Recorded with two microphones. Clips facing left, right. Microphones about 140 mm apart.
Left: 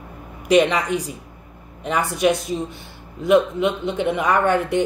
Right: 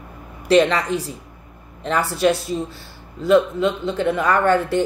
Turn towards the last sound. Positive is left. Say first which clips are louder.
# right 1 dB
turn(degrees=20)  # may be behind; listen again after turning